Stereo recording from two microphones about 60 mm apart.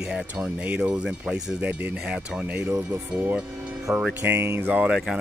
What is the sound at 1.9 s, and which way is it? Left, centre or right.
Speech, centre.